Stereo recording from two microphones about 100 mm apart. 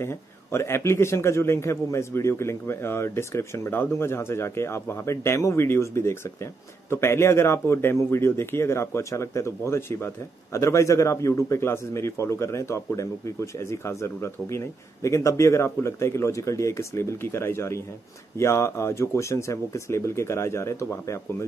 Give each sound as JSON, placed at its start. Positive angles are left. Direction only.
{"t": 0.0, "sound": "a man's voice", "side_deg": 25}